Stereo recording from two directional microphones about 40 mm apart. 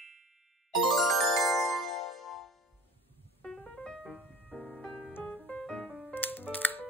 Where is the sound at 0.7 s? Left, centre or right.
Centre.